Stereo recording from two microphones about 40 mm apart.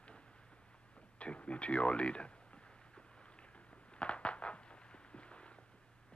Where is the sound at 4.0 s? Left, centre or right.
Left.